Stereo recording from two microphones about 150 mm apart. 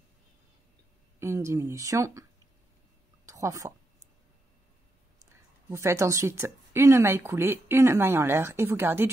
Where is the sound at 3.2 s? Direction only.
20° right (ahead or behind).